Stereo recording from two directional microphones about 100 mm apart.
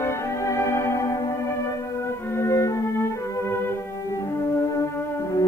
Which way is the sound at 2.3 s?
30° left (ahead or behind).